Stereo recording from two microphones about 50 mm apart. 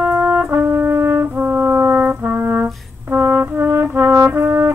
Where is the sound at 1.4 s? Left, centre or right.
Right.